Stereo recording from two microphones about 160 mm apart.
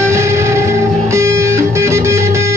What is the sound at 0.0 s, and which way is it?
Music, 15° right (ahead or behind).